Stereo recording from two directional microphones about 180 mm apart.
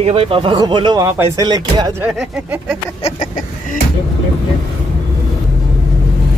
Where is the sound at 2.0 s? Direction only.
5° right (ahead or behind).